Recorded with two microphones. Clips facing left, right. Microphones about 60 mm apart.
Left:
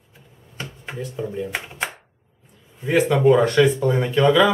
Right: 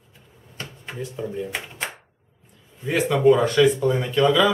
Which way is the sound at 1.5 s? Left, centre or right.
Centre.